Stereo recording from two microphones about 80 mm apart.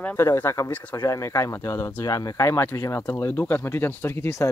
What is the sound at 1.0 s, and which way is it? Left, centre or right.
Speech, left.